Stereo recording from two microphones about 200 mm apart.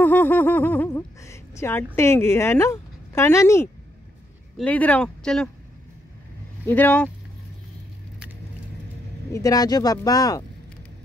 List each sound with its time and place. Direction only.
0.0 s speech: 10° left (ahead or behind)
6.6 s speech: 10° left (ahead or behind)
9.3 s speech: 15° left (ahead or behind)